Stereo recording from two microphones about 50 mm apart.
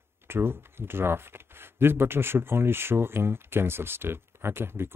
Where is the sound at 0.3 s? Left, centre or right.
Right.